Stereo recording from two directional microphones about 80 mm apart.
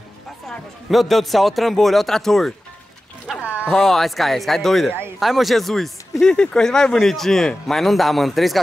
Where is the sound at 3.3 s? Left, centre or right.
Centre.